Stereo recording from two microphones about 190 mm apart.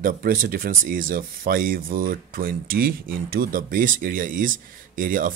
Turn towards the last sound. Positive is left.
turn(degrees=-45)  # may be behind; listen again after turning